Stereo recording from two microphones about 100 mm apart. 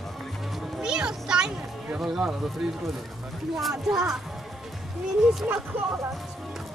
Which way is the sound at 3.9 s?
5° right (ahead or behind).